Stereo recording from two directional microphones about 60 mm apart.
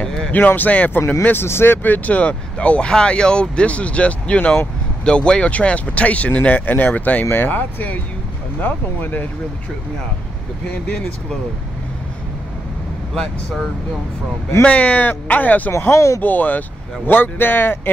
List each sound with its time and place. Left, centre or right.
0.0 s a sound: centre
0.3 s speech: left
14.6 s speech: left
15.7 s speech: left
16.2 s speech: left